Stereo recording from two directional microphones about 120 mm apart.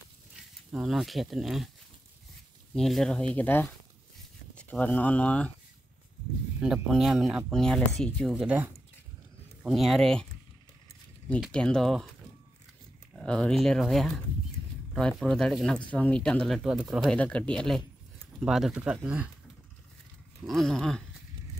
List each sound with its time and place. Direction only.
0.7 s speech: 5° right (ahead or behind)
2.7 s speech: centre (ahead or behind)
3.3 s speech: 15° left (ahead or behind)
6.6 s speech: 5° right (ahead or behind)
8.4 s speech: 15° right (ahead or behind)
9.6 s speech: centre (ahead or behind)
11.5 s speech: 5° left (ahead or behind)
13.1 s speech: 5° left (ahead or behind); by 19.3 s 10° right (ahead or behind)
20.4 s speech: centre (ahead or behind)